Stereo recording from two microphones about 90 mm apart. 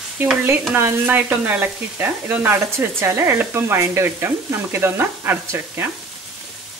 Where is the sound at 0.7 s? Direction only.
25° right (ahead or behind).